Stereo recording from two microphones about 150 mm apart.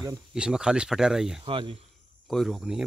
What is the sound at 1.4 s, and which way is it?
Speech, 35° right (ahead or behind).